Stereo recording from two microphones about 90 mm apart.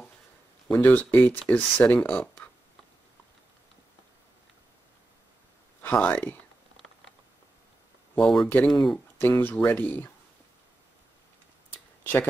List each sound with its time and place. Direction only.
0.7 s speech: 20° left (ahead or behind)
2.0 s a sound: 20° left (ahead or behind)
5.8 s speech: 20° left (ahead or behind)
8.2 s speech: 5° left (ahead or behind)
9.2 s speech: 20° left (ahead or behind)
12.0 s speech: 20° left (ahead or behind)